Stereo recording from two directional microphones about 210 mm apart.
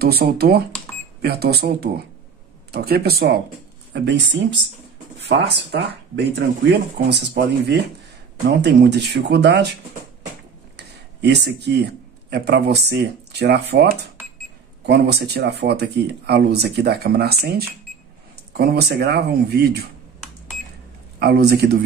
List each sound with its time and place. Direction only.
0.0 s speech: 50° right (ahead or behind)
5.7 s speech: 50° right (ahead or behind)
11.1 s speech: 50° right (ahead or behind)
21.2 s speech: 50° right (ahead or behind)